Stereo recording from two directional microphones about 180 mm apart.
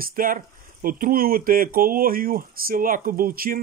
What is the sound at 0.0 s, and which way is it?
Speech, 50° right (ahead or behind).